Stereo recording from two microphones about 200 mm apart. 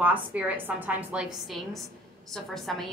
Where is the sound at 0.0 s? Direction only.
10° right (ahead or behind).